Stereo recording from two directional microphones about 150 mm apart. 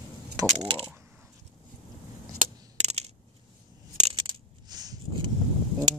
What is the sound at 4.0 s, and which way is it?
Coin, 35° right (ahead or behind).